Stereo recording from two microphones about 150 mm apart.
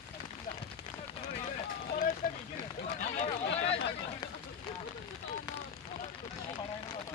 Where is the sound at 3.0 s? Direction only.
50° left (ahead or behind).